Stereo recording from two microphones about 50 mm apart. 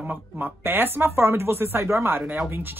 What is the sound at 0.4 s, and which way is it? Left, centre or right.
Speech, right.